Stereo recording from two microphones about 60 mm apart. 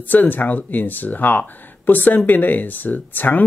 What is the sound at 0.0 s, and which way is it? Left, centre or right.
Speech, left.